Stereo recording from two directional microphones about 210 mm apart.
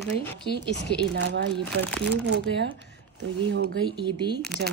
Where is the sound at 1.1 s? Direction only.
60° right (ahead or behind).